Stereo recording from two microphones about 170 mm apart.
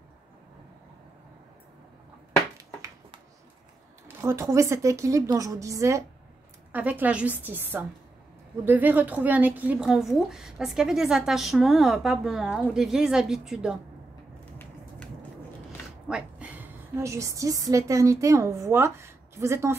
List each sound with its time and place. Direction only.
4.2 s a woman's voice: 15° right (ahead or behind)
16.1 s a woman's voice: 5° right (ahead or behind)